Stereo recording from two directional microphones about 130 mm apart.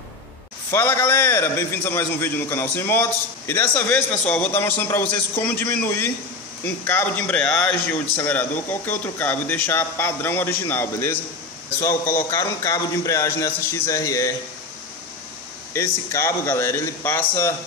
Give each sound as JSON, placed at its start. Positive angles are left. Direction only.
{"t": 0.7, "sound": "a man's voice", "side_deg": 20}
{"t": 15.7, "sound": "a man's voice", "side_deg": 25}